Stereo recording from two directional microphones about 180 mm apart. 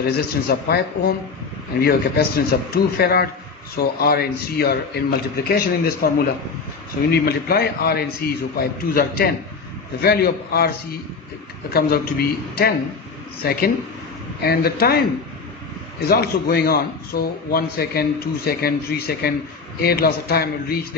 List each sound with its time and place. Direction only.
0.0 s a man's voice: 60° left (ahead or behind)
11.7 s a man's voice: 60° left (ahead or behind)
16.1 s a man's voice: 60° left (ahead or behind)